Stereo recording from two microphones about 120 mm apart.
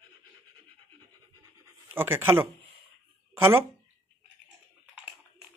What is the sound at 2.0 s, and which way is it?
Speech, 20° right (ahead or behind).